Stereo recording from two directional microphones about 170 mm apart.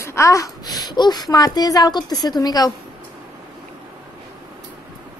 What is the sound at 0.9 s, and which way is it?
A woman's voice, 25° left (ahead or behind).